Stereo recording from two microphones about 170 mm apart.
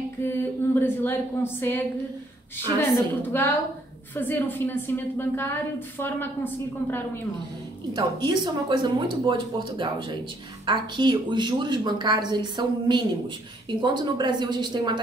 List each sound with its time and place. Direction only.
0.2 s a woman's voice: 10° left (ahead or behind)
2.8 s a woman's voice: 15° left (ahead or behind)
8.3 s speech: 25° right (ahead or behind)